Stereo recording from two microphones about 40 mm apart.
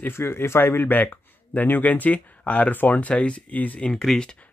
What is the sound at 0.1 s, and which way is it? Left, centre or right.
Speech, left.